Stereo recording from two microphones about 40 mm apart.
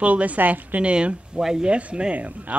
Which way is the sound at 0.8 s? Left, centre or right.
Right.